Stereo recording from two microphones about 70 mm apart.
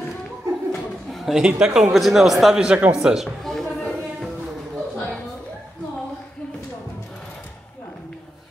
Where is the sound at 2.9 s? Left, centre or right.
Centre.